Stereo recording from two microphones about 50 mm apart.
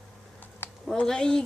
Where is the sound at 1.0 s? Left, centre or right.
Centre.